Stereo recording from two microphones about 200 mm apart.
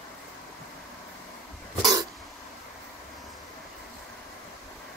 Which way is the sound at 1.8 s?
20° right (ahead or behind).